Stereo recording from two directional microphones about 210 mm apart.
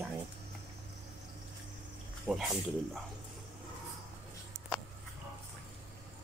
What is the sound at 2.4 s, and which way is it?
Speech, centre (ahead or behind).